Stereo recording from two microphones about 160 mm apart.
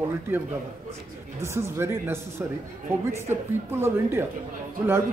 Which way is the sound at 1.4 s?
15° right (ahead or behind).